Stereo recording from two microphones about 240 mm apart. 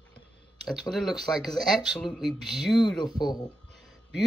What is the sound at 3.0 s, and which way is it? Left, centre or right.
Speech, centre.